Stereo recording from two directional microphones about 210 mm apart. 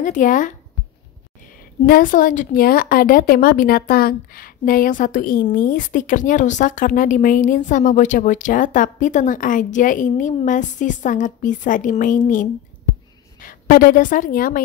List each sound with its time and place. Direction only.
0.0 s a woman's voice: 40° left (ahead or behind)
1.9 s a woman's voice: 40° left (ahead or behind)
13.4 s a woman's voice: 40° left (ahead or behind)